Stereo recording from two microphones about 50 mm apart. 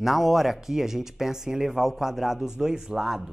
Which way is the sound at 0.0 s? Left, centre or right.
Centre.